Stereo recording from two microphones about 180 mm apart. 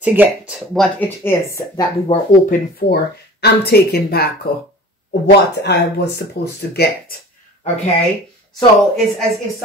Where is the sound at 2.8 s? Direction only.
65° left (ahead or behind).